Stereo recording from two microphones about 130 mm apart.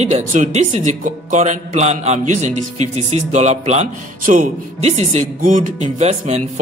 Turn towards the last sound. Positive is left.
turn(degrees=-60)  # may be behind; listen again after turning